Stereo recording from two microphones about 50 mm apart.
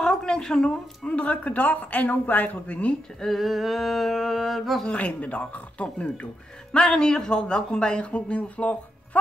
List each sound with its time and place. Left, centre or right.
0.0 s speech: centre
1.0 s speech: left
3.3 s a sound: centre
4.8 s speech: left